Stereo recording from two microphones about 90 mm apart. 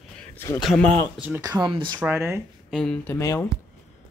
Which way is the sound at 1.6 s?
70° right (ahead or behind).